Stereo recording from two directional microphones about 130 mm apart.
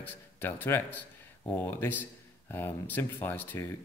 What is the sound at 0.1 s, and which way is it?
Speech, 15° left (ahead or behind).